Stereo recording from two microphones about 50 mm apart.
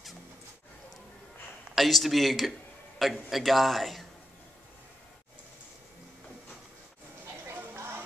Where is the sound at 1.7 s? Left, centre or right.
Centre.